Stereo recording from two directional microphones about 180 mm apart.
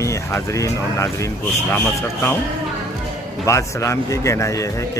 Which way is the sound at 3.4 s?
15° left (ahead or behind).